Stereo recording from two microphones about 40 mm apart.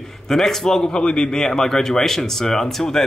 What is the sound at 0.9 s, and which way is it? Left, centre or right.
Speech, left.